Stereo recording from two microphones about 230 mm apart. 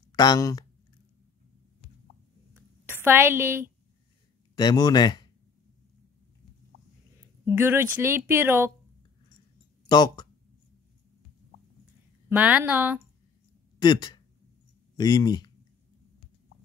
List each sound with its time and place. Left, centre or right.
0.1 s speech: centre
2.5 s a sound: centre
4.6 s speech: centre
7.5 s speech: centre
9.8 s speech: centre
12.3 s speech: centre
13.7 s speech: centre